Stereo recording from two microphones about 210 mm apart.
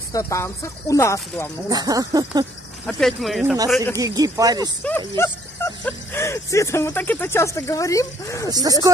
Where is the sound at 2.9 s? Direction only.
Centre (ahead or behind).